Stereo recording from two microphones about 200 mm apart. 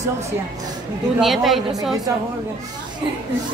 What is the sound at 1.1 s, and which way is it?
Speech, centre (ahead or behind).